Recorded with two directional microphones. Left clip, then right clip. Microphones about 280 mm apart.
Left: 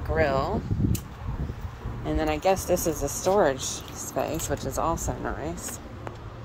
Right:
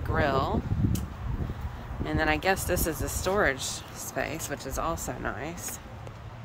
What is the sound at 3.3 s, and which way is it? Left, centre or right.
Speech, centre.